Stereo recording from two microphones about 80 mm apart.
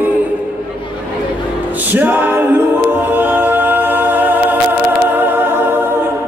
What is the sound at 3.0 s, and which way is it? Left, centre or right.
A capella, right.